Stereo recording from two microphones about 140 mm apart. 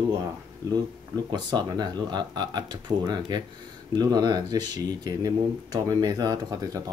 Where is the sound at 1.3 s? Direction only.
30° right (ahead or behind).